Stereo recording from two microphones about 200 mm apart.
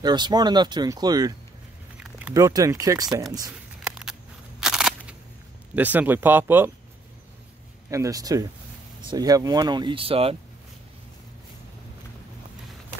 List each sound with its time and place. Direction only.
0.0 s speech: 20° right (ahead or behind)
2.0 s biting: 5° right (ahead or behind)
2.3 s speech: 15° right (ahead or behind)
3.8 s a sound: 5° right (ahead or behind)
5.8 s speech: 10° right (ahead or behind)
7.9 s speech: 15° right (ahead or behind)